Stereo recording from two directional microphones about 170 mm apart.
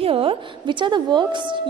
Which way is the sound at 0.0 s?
30° right (ahead or behind).